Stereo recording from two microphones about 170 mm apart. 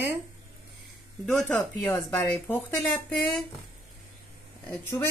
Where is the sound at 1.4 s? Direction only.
10° left (ahead or behind).